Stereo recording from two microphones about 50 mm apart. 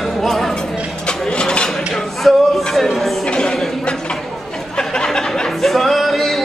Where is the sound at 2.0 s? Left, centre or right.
Centre.